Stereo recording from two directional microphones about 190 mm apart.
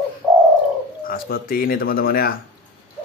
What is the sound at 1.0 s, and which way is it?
Speech, 50° left (ahead or behind).